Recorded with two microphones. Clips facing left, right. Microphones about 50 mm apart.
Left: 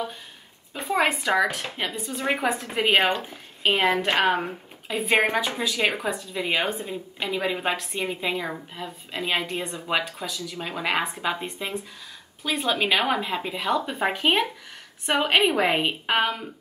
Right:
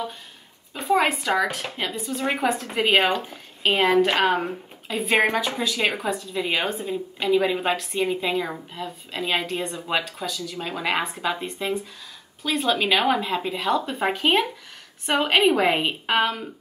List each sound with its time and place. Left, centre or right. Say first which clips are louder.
0.7 s a woman's voice: right 2 dB; centre